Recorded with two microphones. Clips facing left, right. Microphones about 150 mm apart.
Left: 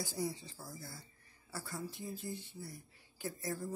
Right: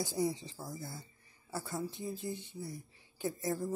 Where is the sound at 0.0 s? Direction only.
20° right (ahead or behind).